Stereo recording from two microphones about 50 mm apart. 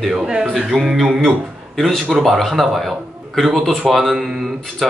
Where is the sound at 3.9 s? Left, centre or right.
Centre.